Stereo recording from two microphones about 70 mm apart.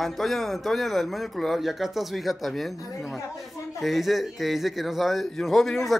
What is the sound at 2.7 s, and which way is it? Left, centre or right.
Speech, left.